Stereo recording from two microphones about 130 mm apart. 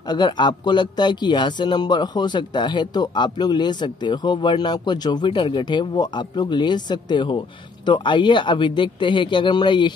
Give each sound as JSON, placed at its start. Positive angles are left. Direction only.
{"t": 0.0, "sound": "speech", "side_deg": 35}